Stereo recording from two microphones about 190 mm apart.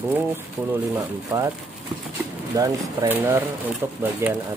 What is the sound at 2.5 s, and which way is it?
Speech, 20° right (ahead or behind).